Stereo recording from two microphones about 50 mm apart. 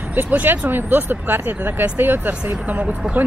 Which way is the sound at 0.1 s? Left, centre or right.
Right.